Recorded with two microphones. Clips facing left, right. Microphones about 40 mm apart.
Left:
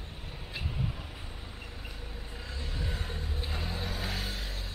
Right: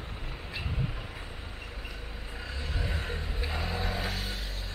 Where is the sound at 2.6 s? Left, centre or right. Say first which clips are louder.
Right 3 dB; centre.